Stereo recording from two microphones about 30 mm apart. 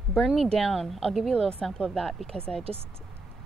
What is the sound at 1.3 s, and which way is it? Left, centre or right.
Speech, left.